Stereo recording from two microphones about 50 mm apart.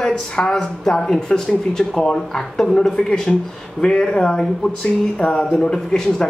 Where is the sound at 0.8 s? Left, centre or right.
Centre.